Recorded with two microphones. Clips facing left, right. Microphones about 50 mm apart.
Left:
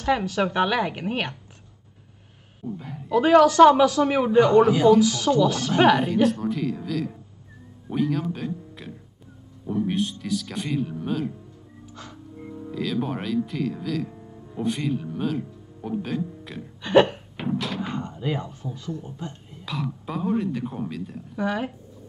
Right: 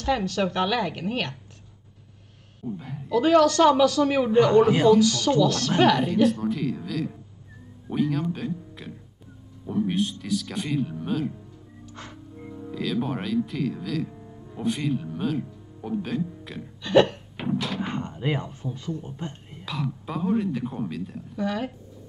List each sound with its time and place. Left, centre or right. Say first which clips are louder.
0.0 s speech: left 2 dB; centre
2.6 s speech: even; centre
3.1 s speech: left 2 dB; centre
6.2 s speech: even; centre
11.9 s music: even; right
12.4 s speech: left 2 dB; centre
16.8 s speech: left 1 dB; centre
17.4 s speech: even; centre
17.9 s speech: even; right
19.6 s speech: even; centre
21.4 s speech: left 2 dB; centre